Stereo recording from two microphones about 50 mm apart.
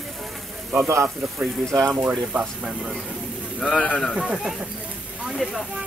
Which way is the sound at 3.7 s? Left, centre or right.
Left.